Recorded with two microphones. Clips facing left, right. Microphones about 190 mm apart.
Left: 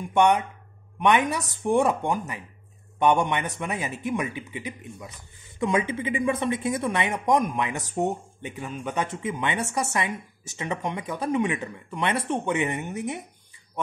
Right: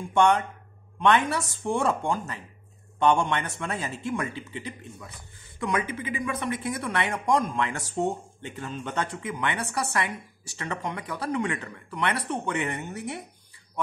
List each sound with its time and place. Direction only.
0.1 s a man's voice: 15° left (ahead or behind)
9.0 s a woman's voice: 20° left (ahead or behind)